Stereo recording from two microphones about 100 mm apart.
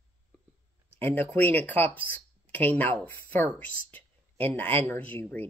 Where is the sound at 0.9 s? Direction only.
20° left (ahead or behind).